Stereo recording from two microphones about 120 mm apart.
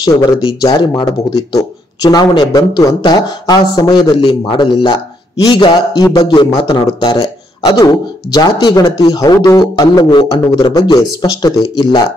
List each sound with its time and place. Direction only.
0.7 s a man's voice: 40° left (ahead or behind)